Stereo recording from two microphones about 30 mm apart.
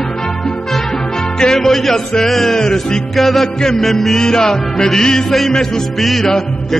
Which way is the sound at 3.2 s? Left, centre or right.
Centre.